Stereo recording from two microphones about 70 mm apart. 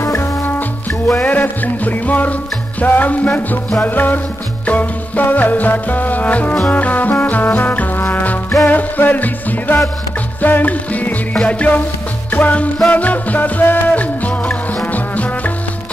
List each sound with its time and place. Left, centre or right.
0.0 s music: left
1.2 s music: left